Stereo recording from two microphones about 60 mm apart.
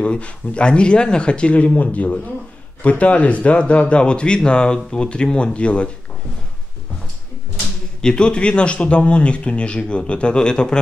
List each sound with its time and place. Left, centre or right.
0.0 s speech: centre
8.0 s speech: centre